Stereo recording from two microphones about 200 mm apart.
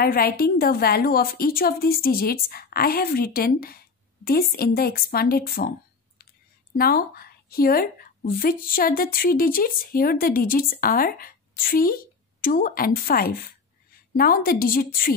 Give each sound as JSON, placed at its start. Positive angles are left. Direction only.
{"t": 0.0, "sound": "a woman's voice", "side_deg": 50}
{"t": 6.8, "sound": "a woman's voice", "side_deg": 50}